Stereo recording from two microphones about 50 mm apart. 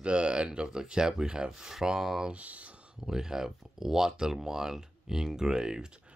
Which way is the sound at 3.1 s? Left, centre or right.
Centre.